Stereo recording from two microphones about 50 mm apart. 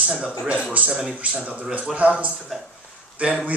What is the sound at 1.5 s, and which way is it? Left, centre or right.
Speech, right.